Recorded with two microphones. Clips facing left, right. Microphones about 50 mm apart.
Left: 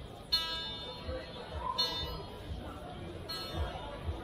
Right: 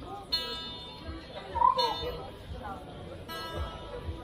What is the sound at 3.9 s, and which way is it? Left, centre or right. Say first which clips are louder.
Chatter: right 3 dB; centre.